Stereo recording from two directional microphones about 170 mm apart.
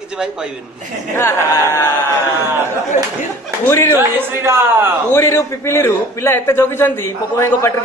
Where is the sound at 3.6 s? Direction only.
15° left (ahead or behind).